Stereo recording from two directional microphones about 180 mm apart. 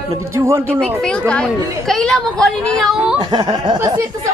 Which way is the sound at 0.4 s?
15° right (ahead or behind).